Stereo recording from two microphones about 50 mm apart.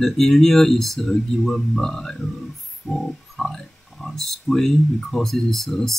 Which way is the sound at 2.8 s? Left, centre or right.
Centre.